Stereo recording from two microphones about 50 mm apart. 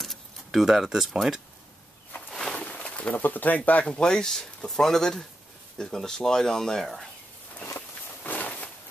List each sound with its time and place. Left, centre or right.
0.0 s keys jangling: centre
0.7 s speech: centre
2.5 s a sound: left
3.2 s speech: left
3.9 s speech: centre
8.2 s a sound: left